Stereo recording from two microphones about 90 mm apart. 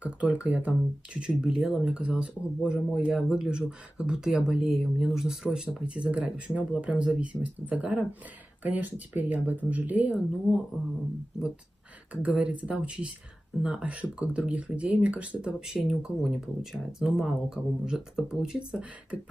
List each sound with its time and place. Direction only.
0.0 s speech: 15° right (ahead or behind)
10.1 s speech: 5° right (ahead or behind)
12.1 s speech: 15° right (ahead or behind)